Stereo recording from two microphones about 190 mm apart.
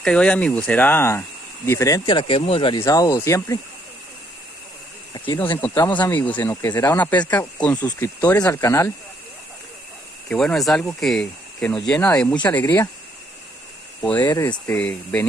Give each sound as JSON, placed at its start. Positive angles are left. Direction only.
{"t": 0.0, "sound": "speech", "side_deg": 5}
{"t": 5.1, "sound": "speech", "side_deg": 25}
{"t": 7.8, "sound": "speech", "side_deg": 20}
{"t": 10.2, "sound": "speech", "side_deg": 5}
{"t": 11.9, "sound": "speech", "side_deg": 15}
{"t": 14.0, "sound": "speech", "side_deg": 10}